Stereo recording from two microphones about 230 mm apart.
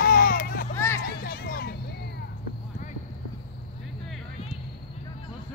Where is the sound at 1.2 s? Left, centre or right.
Left.